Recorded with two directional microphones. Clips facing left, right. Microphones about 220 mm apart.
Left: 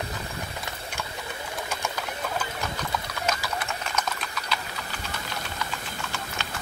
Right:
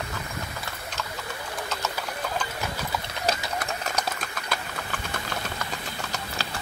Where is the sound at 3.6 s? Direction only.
40° right (ahead or behind).